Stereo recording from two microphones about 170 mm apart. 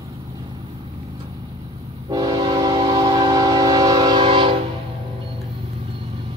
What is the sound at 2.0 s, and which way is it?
Train, 25° right (ahead or behind).